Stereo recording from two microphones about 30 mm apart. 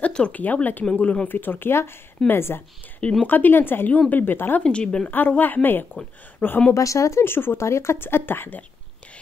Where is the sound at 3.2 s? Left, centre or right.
Left.